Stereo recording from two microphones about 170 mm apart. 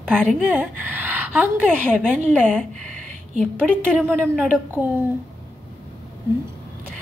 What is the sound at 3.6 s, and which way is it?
Speech, 5° left (ahead or behind).